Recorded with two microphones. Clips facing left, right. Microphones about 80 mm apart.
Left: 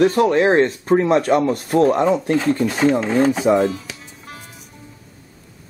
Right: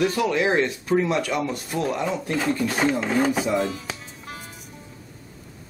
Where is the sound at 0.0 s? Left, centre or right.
Left.